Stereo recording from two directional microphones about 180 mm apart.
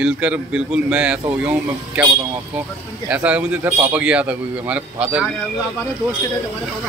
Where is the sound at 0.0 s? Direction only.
5° right (ahead or behind).